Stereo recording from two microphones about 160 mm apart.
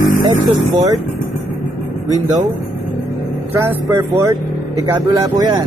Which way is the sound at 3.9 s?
20° right (ahead or behind).